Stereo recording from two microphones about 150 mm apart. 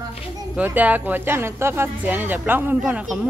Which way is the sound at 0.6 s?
10° right (ahead or behind).